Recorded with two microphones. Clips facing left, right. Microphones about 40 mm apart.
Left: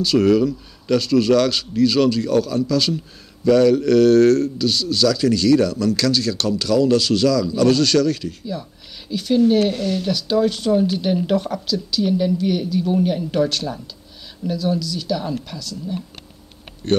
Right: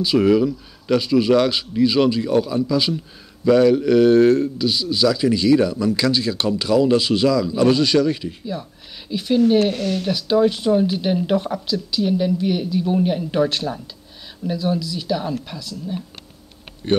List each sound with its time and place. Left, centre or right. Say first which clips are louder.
0.0 s a man's voice: even; centre